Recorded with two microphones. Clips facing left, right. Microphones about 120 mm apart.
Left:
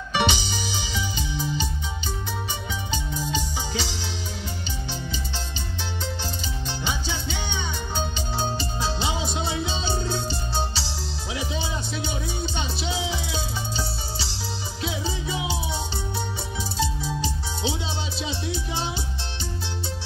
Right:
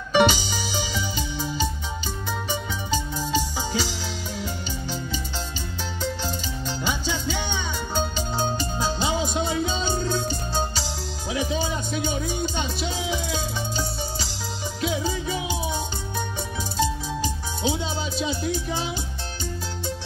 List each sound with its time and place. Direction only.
0.1 s music: 45° right (ahead or behind)
2.9 s music: 40° right (ahead or behind)
6.8 s music: 45° right (ahead or behind)
16.7 s music: 45° right (ahead or behind)